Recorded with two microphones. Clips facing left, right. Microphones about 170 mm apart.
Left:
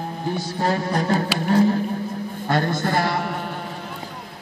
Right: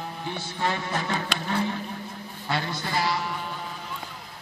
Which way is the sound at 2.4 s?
50° left (ahead or behind).